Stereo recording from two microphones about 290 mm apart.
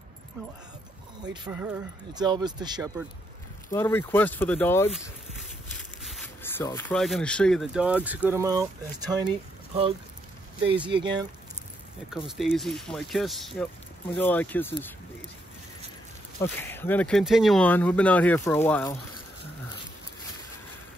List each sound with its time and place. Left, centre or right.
1.3 s speech: centre
3.7 s speech: centre
10.9 s speech: centre
12.3 s speech: centre
16.3 s speech: centre